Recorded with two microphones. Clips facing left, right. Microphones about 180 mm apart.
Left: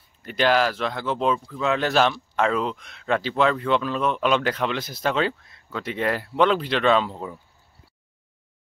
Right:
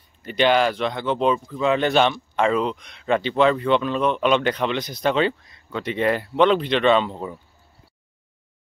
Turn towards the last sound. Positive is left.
turn(degrees=0)  # may be behind; listen again after turning